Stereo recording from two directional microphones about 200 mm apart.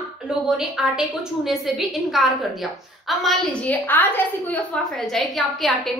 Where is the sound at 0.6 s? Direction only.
Centre (ahead or behind).